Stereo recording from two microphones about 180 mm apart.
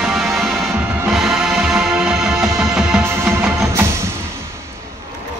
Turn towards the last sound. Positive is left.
turn(degrees=-10)  # may be behind; listen again after turning